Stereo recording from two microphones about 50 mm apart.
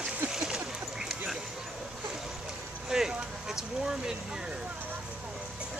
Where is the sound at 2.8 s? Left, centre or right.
Centre.